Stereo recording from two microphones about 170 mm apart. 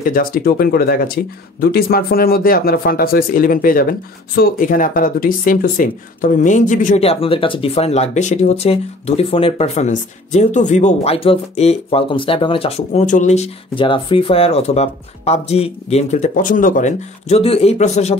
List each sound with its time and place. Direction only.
0.0 s speech: 55° left (ahead or behind)
7.0 s speech: 35° left (ahead or behind)